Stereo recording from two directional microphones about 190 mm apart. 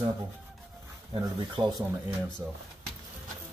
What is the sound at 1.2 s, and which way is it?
Speech, 25° right (ahead or behind).